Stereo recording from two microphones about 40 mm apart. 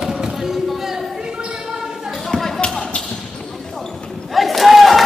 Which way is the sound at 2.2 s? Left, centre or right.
Centre.